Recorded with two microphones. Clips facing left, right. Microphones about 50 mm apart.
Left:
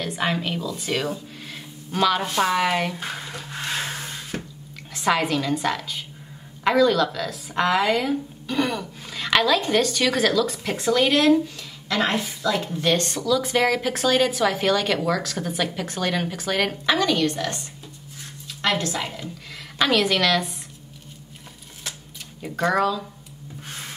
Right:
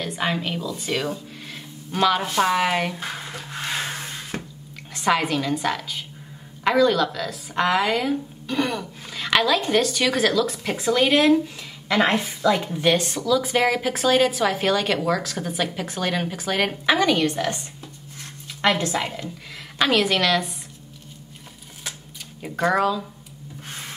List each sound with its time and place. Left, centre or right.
0.0 s speech: centre
4.3 s drip: right
4.9 s speech: centre
12.0 s a woman's voice: right
12.7 s a woman's voice: centre
19.5 s a woman's voice: centre
22.4 s speech: centre